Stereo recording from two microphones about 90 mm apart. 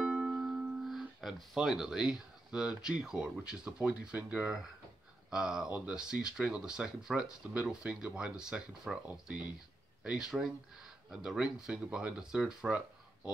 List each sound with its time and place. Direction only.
0.0 s speech: 10° right (ahead or behind)